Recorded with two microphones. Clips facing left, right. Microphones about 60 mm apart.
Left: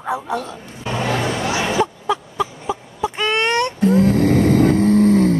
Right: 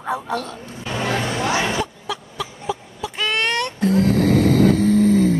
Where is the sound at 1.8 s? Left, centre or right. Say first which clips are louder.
Left 7 dB; left.